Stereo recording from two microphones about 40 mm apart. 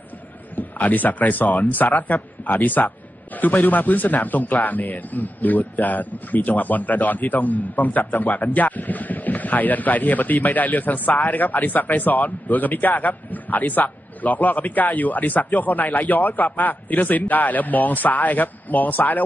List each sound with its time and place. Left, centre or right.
0.6 s speech: left